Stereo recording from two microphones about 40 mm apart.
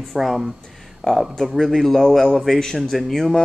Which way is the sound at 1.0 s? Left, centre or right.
Centre.